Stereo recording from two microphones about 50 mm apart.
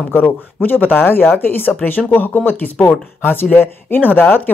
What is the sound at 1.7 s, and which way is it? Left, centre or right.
Speech, left.